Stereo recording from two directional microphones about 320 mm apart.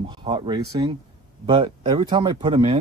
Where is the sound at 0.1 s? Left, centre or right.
Centre.